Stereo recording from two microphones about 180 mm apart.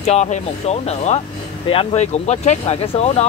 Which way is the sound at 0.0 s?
40° left (ahead or behind).